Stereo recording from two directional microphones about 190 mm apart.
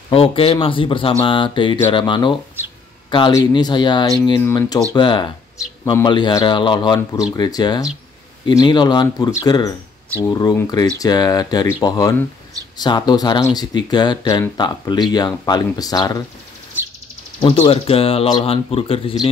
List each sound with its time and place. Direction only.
0.1 s speech: 30° left (ahead or behind)
17.4 s speech: 30° left (ahead or behind)